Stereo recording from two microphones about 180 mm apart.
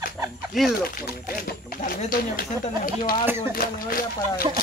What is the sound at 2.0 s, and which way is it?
Speech, 55° left (ahead or behind).